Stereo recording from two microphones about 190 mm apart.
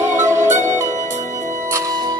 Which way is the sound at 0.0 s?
15° right (ahead or behind).